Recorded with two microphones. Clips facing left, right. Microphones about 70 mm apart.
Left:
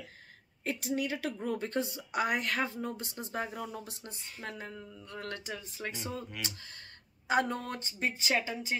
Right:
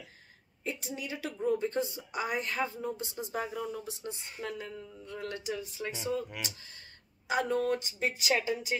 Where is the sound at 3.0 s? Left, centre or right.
Left.